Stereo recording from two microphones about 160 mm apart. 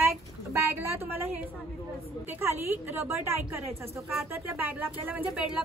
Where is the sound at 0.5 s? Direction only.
15° right (ahead or behind).